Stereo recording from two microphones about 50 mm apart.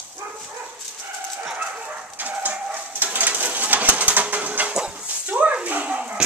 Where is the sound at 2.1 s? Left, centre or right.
Right.